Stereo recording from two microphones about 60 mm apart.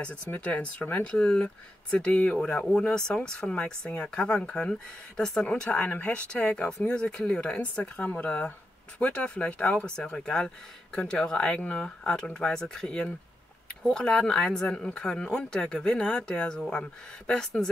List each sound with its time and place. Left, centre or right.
0.0 s speech: centre
5.7 s speech: left